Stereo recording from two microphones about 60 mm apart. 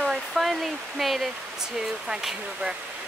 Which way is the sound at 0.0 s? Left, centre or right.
Centre.